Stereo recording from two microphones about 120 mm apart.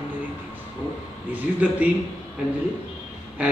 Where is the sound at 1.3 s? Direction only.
10° right (ahead or behind).